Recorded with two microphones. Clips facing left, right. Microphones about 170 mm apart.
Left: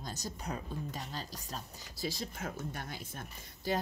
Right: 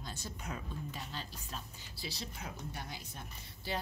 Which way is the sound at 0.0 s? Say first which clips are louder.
Left 4 dB; 40° left (ahead or behind).